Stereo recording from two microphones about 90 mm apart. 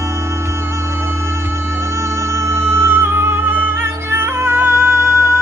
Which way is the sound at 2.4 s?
30° right (ahead or behind).